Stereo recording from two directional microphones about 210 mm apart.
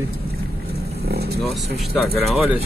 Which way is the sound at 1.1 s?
50° right (ahead or behind).